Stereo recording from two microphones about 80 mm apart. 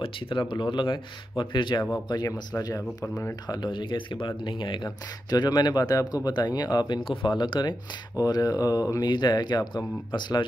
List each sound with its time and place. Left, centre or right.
0.3 s speech: left
2.0 s speech: left
3.4 s speech: left
8.2 s speech: left